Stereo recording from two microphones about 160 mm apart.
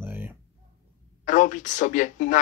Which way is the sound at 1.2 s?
50° left (ahead or behind).